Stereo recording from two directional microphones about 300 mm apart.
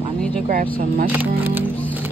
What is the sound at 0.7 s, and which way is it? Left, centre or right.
Speech, right.